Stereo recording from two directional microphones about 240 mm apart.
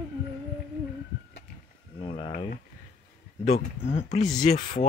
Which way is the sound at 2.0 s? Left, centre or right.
Left.